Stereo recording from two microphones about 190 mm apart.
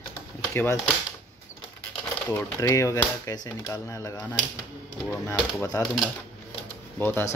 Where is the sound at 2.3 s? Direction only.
15° left (ahead or behind).